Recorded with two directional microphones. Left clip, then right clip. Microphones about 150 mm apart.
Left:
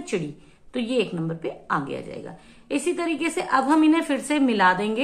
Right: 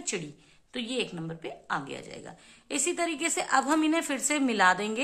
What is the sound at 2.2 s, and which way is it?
A woman's voice, 30° right (ahead or behind).